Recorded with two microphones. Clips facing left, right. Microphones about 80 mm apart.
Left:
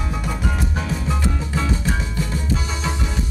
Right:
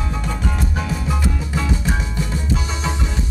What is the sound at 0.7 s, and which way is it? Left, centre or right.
Music, centre.